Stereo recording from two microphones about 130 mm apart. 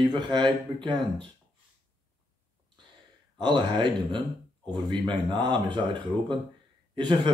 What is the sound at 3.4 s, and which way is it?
Speech, 35° right (ahead or behind).